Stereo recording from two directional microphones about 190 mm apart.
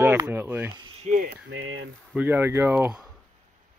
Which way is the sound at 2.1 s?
10° right (ahead or behind).